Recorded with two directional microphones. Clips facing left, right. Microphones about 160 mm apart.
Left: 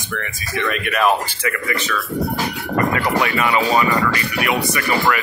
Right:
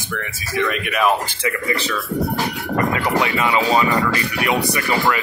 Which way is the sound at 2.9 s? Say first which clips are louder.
Even; 20° right (ahead or behind).